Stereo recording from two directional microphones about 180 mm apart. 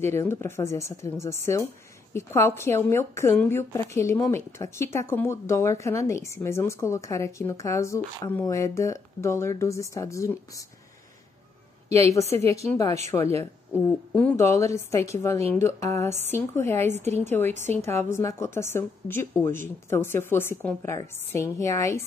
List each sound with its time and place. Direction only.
0.0 s speech: 15° left (ahead or behind)
11.9 s speech: 15° left (ahead or behind)
14.1 s speech: 10° left (ahead or behind)